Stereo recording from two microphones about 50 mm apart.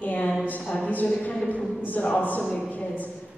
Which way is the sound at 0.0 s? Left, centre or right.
Left.